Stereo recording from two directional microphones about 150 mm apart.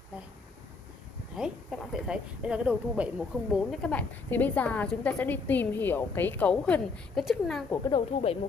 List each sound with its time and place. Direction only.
1.3 s speech: 5° right (ahead or behind)
7.9 s speech: 40° left (ahead or behind)